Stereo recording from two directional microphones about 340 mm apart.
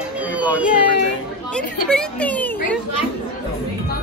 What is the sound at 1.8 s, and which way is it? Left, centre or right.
Speech, centre.